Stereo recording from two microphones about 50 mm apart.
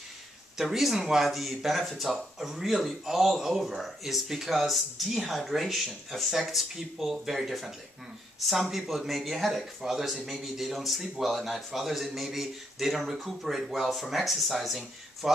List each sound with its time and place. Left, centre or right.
0.6 s speech: centre